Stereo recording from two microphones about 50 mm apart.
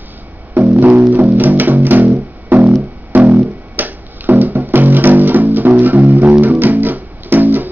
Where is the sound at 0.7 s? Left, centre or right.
Right.